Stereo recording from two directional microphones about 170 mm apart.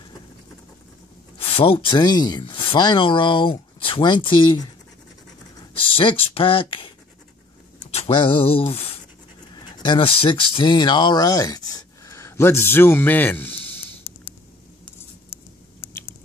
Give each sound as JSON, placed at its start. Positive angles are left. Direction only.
{"t": 1.6, "sound": "speech", "side_deg": 30}
{"t": 5.9, "sound": "speech", "side_deg": 30}